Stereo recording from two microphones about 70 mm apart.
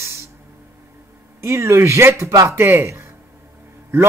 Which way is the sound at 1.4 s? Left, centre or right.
Right.